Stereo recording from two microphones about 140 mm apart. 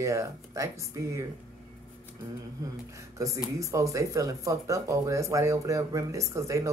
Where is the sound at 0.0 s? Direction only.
20° right (ahead or behind).